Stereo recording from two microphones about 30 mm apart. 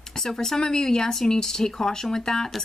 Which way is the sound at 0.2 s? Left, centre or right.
Centre.